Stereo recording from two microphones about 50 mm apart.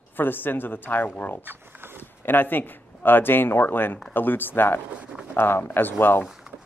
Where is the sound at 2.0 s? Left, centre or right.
Left.